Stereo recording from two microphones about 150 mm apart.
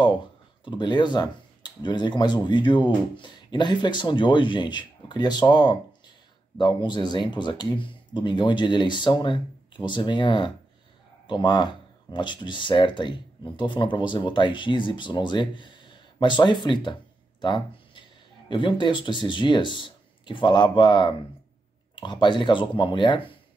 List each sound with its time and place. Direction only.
0.7 s speech: 30° left (ahead or behind)